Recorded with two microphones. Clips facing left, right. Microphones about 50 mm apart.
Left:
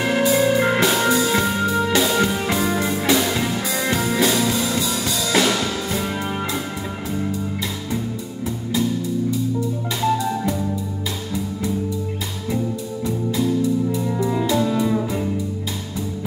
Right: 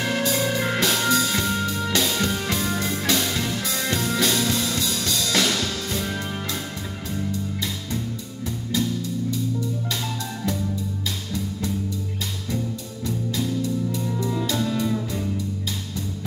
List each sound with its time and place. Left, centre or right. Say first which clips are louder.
0.0 s music: left 6 dB; centre
8.7 s music: left 4 dB; centre
13.4 s music: left 7 dB; centre